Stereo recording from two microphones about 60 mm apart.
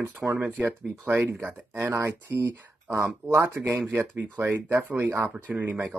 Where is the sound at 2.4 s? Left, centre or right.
Right.